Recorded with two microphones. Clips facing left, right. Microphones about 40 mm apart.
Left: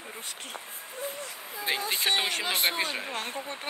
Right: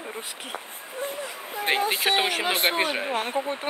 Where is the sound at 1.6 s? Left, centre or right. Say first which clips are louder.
Right 7 dB; right.